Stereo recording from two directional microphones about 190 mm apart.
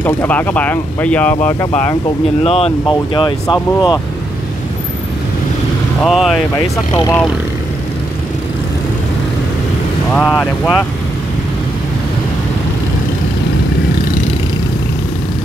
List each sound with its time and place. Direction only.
0.0 s speech: 10° left (ahead or behind)
2.4 s speech: 30° left (ahead or behind)
6.0 s speech: centre (ahead or behind)
6.9 s speech: 20° left (ahead or behind)
10.1 s speech: centre (ahead or behind)